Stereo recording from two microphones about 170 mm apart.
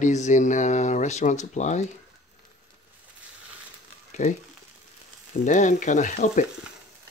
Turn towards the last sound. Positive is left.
turn(degrees=45)  # may be behind; listen again after turning